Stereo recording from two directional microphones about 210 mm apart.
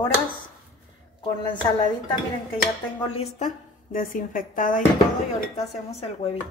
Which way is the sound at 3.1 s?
30° left (ahead or behind).